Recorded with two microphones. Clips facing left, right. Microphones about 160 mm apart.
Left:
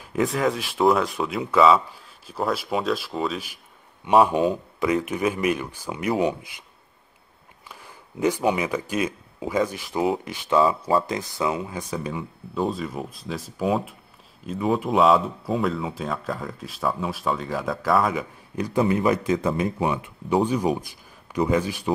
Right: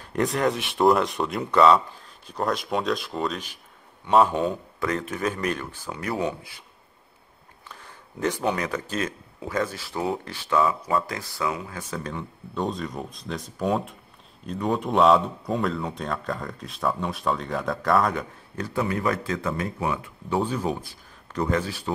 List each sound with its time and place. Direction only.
0.0 s speech: centre (ahead or behind)
4.0 s speech: 15° left (ahead or behind)
7.6 s speech: 10° left (ahead or behind)
18.6 s speech: 20° left (ahead or behind)